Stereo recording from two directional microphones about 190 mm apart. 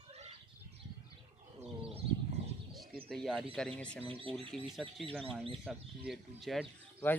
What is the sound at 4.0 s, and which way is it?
Speech, 30° right (ahead or behind).